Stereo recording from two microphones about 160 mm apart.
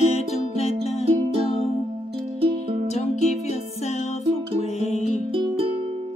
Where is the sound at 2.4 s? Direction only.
35° right (ahead or behind).